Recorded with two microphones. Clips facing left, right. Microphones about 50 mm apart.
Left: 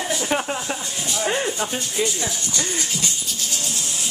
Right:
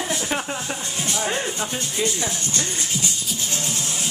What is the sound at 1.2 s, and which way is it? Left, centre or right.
Speech, centre.